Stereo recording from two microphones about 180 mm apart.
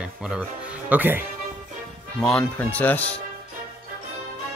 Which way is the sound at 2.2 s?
5° left (ahead or behind).